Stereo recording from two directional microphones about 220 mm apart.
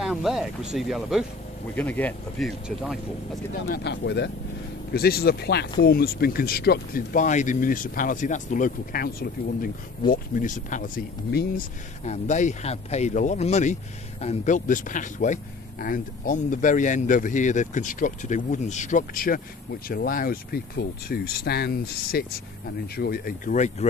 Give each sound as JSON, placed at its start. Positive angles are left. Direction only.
{"t": 0.0, "sound": "speech", "side_deg": 0}
{"t": 3.5, "sound": "speech", "side_deg": 50}